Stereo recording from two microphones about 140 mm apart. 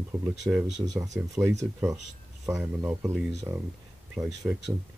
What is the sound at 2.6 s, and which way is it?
Speech, 10° right (ahead or behind).